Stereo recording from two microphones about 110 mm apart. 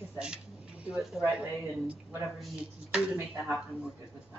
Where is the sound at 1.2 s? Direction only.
15° right (ahead or behind).